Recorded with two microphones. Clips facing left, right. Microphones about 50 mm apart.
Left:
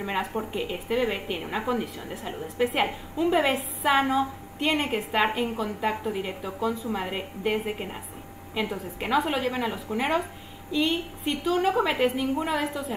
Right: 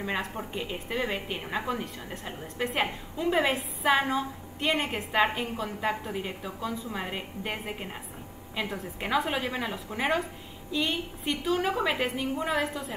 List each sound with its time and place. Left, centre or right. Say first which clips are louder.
0.0 s a woman's voice: left 3 dB; centre